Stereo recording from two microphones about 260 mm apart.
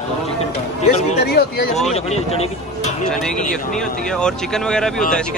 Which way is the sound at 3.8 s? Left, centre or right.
Centre.